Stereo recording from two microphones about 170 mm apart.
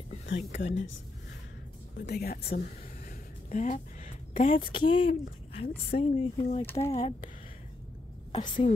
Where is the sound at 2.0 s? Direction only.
70° left (ahead or behind).